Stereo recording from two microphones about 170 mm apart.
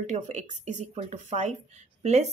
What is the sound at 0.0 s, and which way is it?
Speech, 45° right (ahead or behind).